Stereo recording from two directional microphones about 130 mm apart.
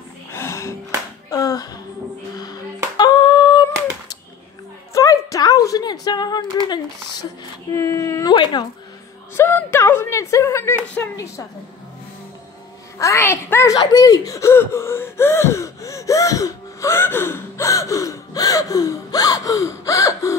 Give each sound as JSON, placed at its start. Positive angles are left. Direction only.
{"t": 0.3, "sound": "music", "side_deg": 20}
{"t": 1.3, "sound": "a sound", "side_deg": 30}
{"t": 3.0, "sound": "a sound", "side_deg": 35}
{"t": 7.7, "sound": "speech", "side_deg": 20}
{"t": 9.3, "sound": "speech", "side_deg": 20}
{"t": 13.0, "sound": "speech", "side_deg": 20}
{"t": 13.7, "sound": "gasp", "side_deg": 30}